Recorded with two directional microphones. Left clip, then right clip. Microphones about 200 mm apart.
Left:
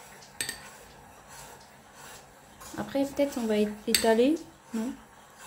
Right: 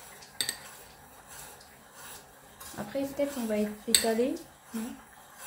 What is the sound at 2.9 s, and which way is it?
Speech, 35° left (ahead or behind).